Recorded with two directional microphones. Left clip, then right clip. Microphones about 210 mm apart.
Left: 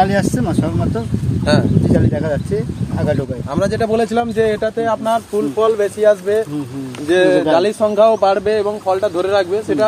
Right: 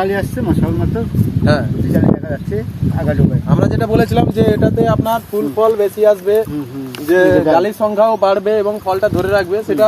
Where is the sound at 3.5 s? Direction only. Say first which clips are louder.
Left 1 dB; centre (ahead or behind).